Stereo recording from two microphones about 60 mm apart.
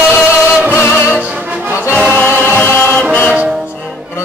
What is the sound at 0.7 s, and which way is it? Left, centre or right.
Music, left.